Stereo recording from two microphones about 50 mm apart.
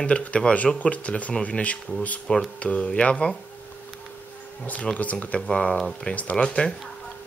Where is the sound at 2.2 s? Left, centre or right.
Centre.